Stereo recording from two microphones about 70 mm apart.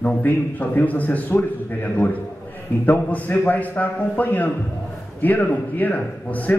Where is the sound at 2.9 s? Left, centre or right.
Left.